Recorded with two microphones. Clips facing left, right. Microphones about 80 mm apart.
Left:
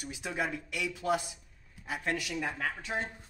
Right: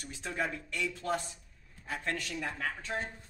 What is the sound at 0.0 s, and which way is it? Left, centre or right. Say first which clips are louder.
Speech: left 1 dB; centre.